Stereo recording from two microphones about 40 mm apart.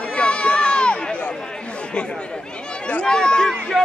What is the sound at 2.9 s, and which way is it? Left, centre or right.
Run, left.